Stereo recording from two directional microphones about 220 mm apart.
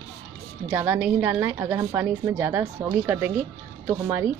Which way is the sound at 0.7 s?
10° right (ahead or behind).